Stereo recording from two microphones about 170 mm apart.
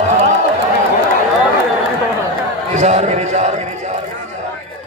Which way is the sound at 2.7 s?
40° right (ahead or behind).